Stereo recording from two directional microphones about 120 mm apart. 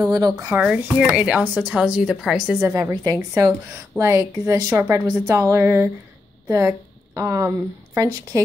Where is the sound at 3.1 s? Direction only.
25° right (ahead or behind).